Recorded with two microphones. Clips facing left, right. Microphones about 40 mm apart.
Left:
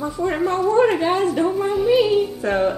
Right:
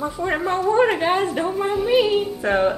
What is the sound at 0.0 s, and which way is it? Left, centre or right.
A woman's voice, centre.